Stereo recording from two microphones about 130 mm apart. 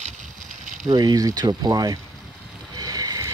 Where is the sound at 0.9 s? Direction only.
30° right (ahead or behind).